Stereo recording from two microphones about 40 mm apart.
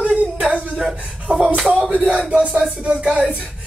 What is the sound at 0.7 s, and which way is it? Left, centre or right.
Speech, centre.